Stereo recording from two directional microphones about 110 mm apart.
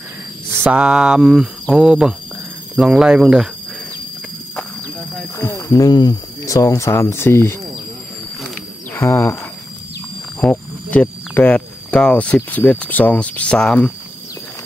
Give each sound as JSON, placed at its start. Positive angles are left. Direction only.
{"t": 0.5, "sound": "speech", "side_deg": -15}
{"t": 5.4, "sound": "a sound", "side_deg": 20}
{"t": 5.7, "sound": "speech", "side_deg": 35}
{"t": 8.9, "sound": "speech", "side_deg": 20}
{"t": 10.5, "sound": "speech", "side_deg": 15}